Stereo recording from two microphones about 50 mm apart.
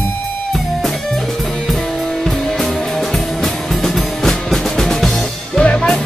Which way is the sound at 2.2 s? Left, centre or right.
Centre.